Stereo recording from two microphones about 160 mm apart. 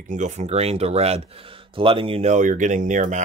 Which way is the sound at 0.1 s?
50° right (ahead or behind).